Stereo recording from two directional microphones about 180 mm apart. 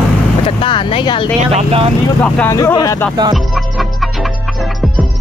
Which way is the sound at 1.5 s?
35° right (ahead or behind).